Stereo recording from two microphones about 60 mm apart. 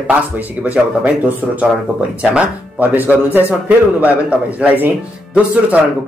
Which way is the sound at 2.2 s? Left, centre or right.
Centre.